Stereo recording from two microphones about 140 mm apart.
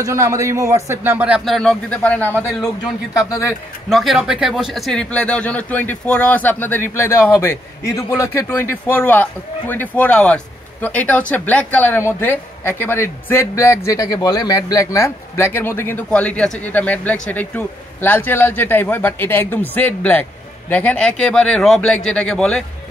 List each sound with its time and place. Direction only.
0.0 s a man's voice: 20° right (ahead or behind); by 3.5 s 20° left (ahead or behind)
3.9 s speech: centre (ahead or behind)